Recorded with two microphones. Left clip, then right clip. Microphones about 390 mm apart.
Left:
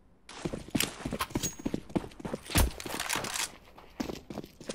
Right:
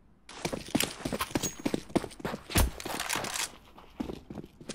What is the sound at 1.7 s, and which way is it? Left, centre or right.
Clip-clop, centre.